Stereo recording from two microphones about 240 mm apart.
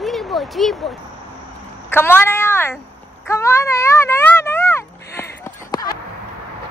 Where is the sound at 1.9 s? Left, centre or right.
Centre.